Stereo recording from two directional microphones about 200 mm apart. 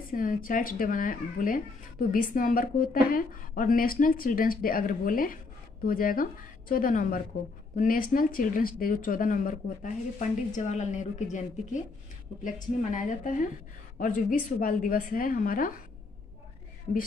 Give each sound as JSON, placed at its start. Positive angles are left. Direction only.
{"t": 0.1, "sound": "a woman's voice", "side_deg": 45}
{"t": 14.6, "sound": "speech", "side_deg": 45}